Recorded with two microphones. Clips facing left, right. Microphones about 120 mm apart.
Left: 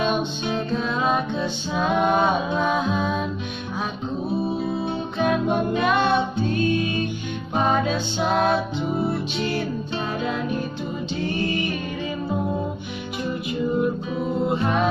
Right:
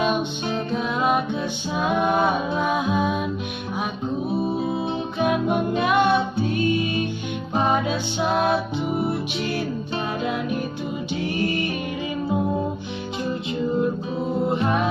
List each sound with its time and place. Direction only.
0.7 s music: 15° right (ahead or behind)
2.0 s a sound: 20° left (ahead or behind)
2.6 s music: 15° right (ahead or behind)
5.2 s music: 15° right (ahead or behind)